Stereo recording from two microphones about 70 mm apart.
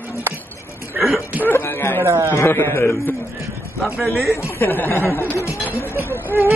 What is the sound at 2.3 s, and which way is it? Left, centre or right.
Speech, left.